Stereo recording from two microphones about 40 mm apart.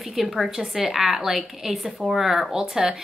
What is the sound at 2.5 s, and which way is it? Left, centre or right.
Speech, centre.